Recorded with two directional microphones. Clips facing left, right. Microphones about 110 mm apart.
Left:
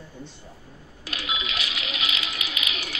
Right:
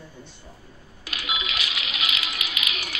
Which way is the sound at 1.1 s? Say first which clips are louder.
Even; 30° left (ahead or behind).